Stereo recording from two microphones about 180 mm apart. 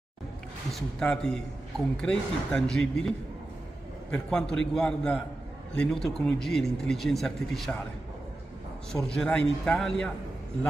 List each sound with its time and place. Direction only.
0.7 s speech: centre (ahead or behind)
4.1 s speech: 5° left (ahead or behind)
8.9 s speech: 5° left (ahead or behind)